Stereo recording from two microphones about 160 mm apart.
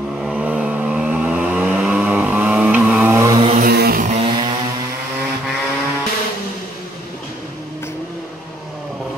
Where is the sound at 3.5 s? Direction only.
75° right (ahead or behind).